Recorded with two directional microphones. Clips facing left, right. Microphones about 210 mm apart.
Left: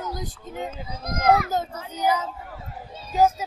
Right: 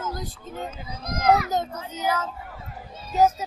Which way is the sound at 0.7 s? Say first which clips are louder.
Left 1 dB; 55° left (ahead or behind).